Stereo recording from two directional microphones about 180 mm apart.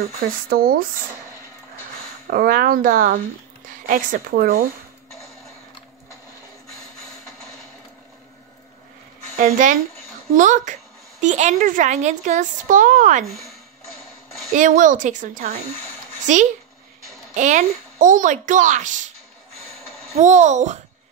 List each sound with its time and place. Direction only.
0.5 s speech: 55° right (ahead or behind)
2.2 s speech: 55° right (ahead or behind)
9.4 s speech: 45° right (ahead or behind)
14.5 s speech: 45° right (ahead or behind)
20.2 s a child's voice: 40° right (ahead or behind)